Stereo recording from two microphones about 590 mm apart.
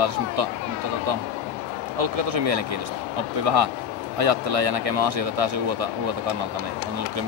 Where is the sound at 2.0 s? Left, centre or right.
Right.